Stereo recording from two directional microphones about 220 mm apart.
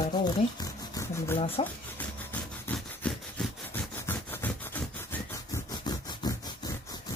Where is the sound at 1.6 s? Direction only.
10° left (ahead or behind).